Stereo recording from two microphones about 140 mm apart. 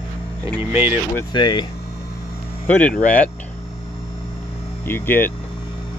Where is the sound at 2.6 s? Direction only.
10° left (ahead or behind).